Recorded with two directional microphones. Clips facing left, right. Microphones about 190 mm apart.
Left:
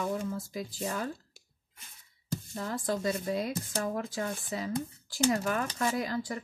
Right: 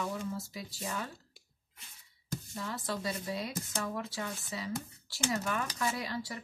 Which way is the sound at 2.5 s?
45° left (ahead or behind).